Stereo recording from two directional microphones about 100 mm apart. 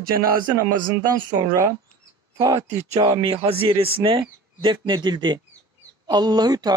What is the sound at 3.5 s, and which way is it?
A man's voice, 70° right (ahead or behind).